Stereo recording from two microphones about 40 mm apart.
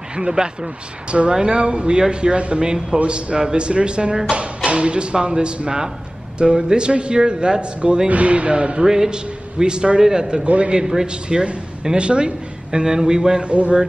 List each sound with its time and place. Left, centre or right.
0.1 s speech: right
8.8 s speech: centre
10.4 s speech: right
10.8 s speech: centre
13.5 s speech: right